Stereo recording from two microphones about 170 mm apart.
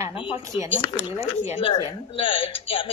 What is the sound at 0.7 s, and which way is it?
Speech, 30° left (ahead or behind).